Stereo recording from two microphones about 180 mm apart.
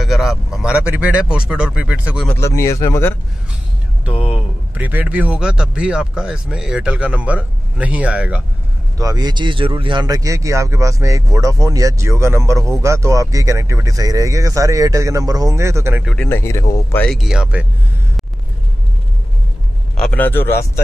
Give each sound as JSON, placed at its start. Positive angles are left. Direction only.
{"t": 0.0, "sound": "speech", "side_deg": 0}
{"t": 2.2, "sound": "speech", "side_deg": 15}
{"t": 4.0, "sound": "speech", "side_deg": -10}
{"t": 8.9, "sound": "speech", "side_deg": -20}
{"t": 16.1, "sound": "speech", "side_deg": 10}
{"t": 20.0, "sound": "speech", "side_deg": 10}